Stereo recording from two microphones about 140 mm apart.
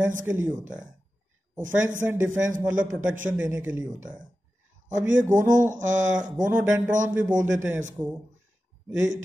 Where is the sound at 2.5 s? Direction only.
65° right (ahead or behind).